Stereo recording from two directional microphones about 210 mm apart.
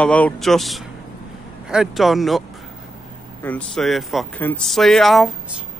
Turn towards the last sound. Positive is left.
turn(degrees=0)  # may be behind; listen again after turning